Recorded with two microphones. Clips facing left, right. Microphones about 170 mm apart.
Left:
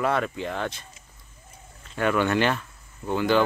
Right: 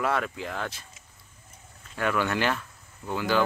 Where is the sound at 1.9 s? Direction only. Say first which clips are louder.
Left 4 dB; centre (ahead or behind).